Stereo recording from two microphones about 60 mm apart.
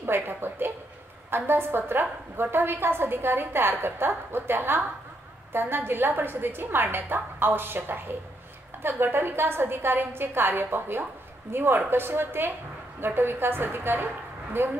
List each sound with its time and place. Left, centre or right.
0.0 s a woman's voice: right